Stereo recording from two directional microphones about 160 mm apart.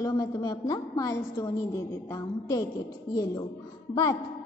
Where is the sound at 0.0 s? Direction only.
25° left (ahead or behind).